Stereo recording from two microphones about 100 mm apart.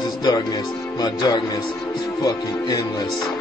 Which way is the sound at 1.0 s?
45° left (ahead or behind).